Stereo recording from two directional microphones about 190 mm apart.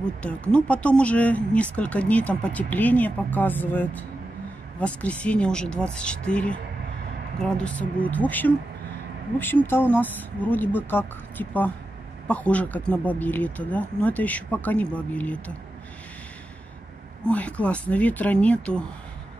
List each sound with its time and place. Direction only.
0.0 s speech: 5° left (ahead or behind)
17.3 s speech: 5° left (ahead or behind)